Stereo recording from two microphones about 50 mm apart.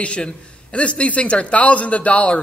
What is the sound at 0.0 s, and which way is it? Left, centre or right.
Speech, left.